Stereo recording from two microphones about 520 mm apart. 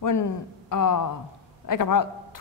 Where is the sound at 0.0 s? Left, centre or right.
Left.